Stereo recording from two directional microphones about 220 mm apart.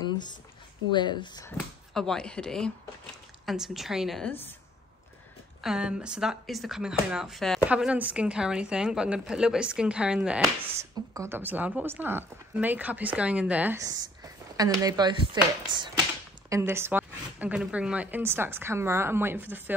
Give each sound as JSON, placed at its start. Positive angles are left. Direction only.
{"t": 0.9, "sound": "speech", "side_deg": 20}
{"t": 2.0, "sound": "speech", "side_deg": 5}
{"t": 5.6, "sound": "speech", "side_deg": -5}